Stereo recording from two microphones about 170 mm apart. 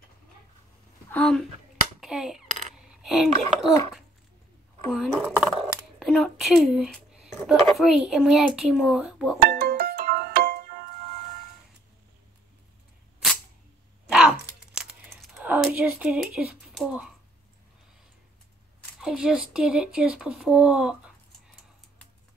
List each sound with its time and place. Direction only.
1.1 s speech: 5° left (ahead or behind)
2.0 s finger snapping: 5° right (ahead or behind)
2.9 s a child's voice: centre (ahead or behind)
4.9 s speech: 5° right (ahead or behind)
5.4 s a sound: 5° right (ahead or behind)
7.6 s speech: centre (ahead or behind)
9.5 s music: 70° right (ahead or behind)
14.0 s typing: 5° right (ahead or behind)
14.7 s a sound: 5° right (ahead or behind)
18.9 s speech: 5° right (ahead or behind)